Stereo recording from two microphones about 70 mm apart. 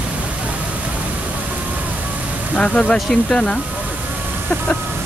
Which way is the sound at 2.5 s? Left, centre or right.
Centre.